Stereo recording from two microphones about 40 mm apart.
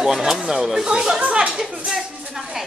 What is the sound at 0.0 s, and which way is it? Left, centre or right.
Speech, centre.